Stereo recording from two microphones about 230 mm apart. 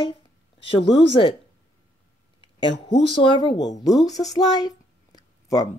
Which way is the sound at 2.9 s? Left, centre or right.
Left.